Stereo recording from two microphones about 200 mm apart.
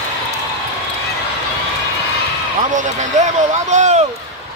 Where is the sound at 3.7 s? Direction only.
35° right (ahead or behind).